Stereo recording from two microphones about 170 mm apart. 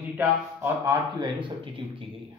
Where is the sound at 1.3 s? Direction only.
30° right (ahead or behind).